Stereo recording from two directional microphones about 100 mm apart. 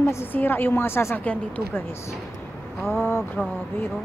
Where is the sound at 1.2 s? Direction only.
15° left (ahead or behind).